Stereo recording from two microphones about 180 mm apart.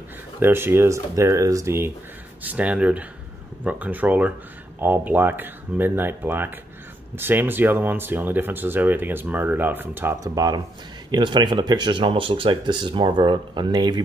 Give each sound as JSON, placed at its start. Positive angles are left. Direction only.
{"t": 0.4, "sound": "speech", "side_deg": -10}